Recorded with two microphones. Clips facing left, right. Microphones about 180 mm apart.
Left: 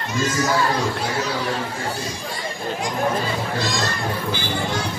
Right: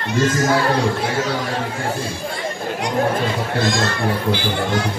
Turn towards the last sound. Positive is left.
turn(degrees=-55)  # may be behind; listen again after turning